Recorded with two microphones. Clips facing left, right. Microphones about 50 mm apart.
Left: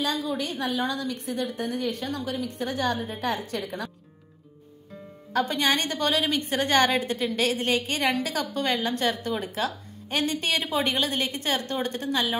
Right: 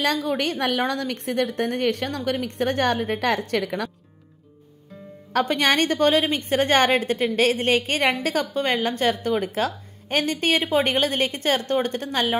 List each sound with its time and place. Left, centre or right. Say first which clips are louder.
0.0 s a woman's voice: right 5 dB; right
5.3 s a woman's voice: right 4 dB; right